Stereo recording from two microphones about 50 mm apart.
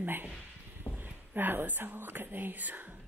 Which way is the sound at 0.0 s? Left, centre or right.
Right.